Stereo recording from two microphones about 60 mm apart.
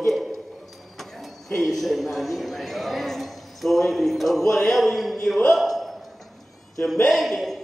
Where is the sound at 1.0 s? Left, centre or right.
Centre.